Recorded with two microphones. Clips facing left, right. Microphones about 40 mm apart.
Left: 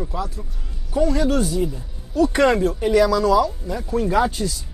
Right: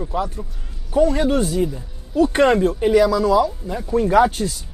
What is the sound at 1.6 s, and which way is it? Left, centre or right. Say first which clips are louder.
Speech: right 2 dB; right.